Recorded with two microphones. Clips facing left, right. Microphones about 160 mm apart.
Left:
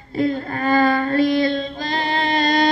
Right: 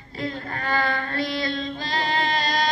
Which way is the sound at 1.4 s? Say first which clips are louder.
Left 8 dB; 55° left (ahead or behind).